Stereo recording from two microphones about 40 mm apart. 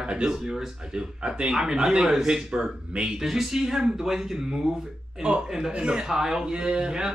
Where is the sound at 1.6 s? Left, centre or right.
Centre.